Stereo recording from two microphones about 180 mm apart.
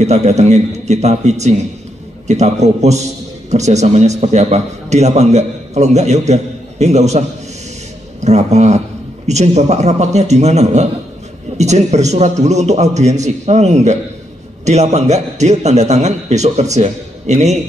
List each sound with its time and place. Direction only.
0.0 s a man's voice: 40° right (ahead or behind)